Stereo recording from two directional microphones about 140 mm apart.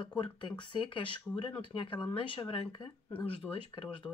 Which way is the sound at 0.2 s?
35° left (ahead or behind).